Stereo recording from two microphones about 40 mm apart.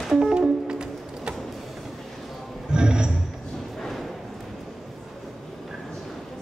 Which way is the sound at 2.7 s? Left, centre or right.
Right.